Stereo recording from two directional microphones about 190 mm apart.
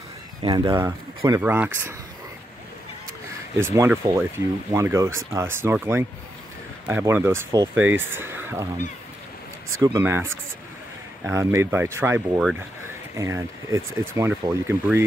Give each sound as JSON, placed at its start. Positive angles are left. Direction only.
{"t": 0.4, "sound": "speech", "side_deg": -20}
{"t": 3.5, "sound": "speech", "side_deg": -15}
{"t": 9.8, "sound": "speech", "side_deg": -15}